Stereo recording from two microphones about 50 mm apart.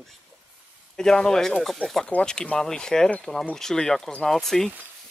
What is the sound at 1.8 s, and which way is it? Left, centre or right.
Speech, left.